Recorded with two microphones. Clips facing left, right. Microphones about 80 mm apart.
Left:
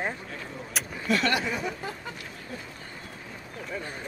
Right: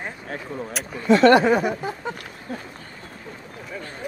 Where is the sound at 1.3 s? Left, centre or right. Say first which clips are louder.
Right 13 dB; right.